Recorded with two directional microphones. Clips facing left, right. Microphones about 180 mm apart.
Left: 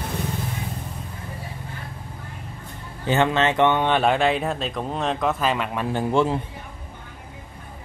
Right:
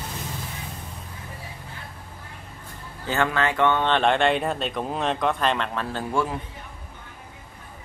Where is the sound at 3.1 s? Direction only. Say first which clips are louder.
Left 4 dB; 20° left (ahead or behind).